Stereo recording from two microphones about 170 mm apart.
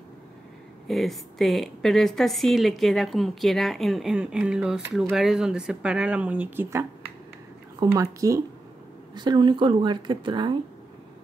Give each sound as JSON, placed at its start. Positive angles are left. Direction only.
{"t": 0.8, "sound": "a woman's voice", "side_deg": 0}